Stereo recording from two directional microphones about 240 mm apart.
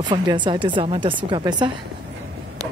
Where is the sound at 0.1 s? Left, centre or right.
Centre.